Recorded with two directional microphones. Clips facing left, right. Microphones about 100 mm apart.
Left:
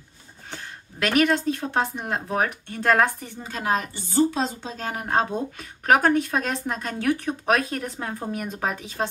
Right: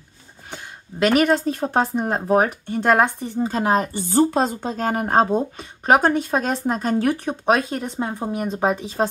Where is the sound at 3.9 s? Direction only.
50° right (ahead or behind); by 9.1 s 30° right (ahead or behind).